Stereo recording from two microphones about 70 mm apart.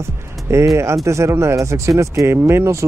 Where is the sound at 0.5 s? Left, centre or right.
Right.